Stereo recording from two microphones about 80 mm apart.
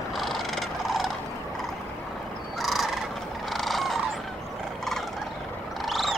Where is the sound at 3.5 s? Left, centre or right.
Centre.